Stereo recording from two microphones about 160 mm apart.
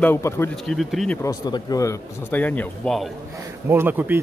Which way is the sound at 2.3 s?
10° left (ahead or behind).